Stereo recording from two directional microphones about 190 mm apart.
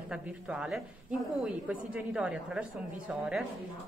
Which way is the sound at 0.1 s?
5° right (ahead or behind).